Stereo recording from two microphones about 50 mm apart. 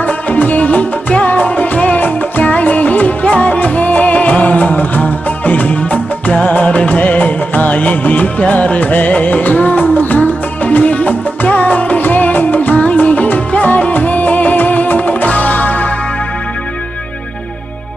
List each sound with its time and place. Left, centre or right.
0.0 s music: left